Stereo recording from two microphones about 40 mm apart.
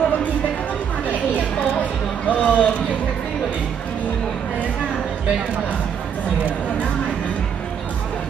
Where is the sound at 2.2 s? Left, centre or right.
Left.